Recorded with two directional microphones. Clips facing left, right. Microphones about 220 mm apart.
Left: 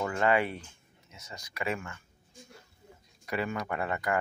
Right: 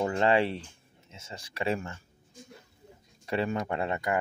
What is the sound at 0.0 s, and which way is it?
Speech, 30° right (ahead or behind).